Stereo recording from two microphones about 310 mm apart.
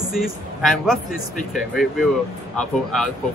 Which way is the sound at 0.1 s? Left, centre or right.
Centre.